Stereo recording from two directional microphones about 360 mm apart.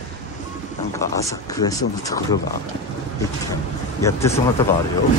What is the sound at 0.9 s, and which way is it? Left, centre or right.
Speech, centre.